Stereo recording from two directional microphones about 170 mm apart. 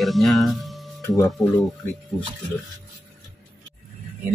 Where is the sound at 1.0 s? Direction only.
15° left (ahead or behind).